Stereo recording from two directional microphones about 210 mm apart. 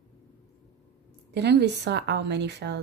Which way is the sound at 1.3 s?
55° right (ahead or behind).